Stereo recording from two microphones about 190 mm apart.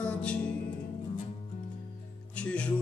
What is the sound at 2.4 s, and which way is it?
Music, 5° left (ahead or behind).